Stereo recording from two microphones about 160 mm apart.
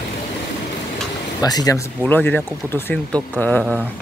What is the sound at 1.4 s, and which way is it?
Speech, 25° left (ahead or behind).